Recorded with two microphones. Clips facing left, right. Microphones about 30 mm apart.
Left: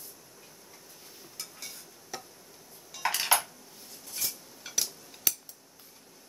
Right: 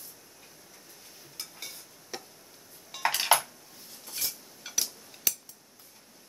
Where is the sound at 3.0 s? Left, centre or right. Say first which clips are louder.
Right 3 dB; centre.